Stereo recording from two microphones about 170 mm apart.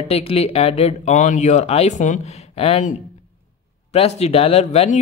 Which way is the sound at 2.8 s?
45° left (ahead or behind).